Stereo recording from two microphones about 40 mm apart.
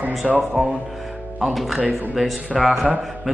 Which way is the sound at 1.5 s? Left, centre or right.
Centre.